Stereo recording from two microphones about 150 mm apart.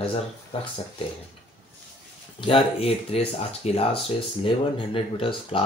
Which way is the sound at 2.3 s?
35° left (ahead or behind).